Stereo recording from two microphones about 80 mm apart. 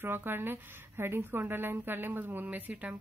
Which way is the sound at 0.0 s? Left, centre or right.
Right.